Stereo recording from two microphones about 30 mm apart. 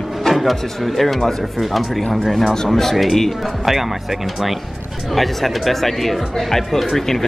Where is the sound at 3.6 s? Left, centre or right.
Centre.